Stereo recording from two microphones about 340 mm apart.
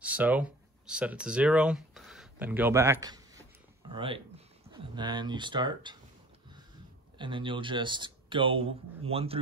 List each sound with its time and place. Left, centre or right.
0.0 s speech: centre
7.2 s speech: centre